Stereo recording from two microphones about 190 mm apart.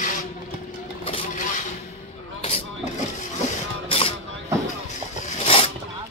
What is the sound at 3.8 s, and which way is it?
Mechanisms, 30° left (ahead or behind).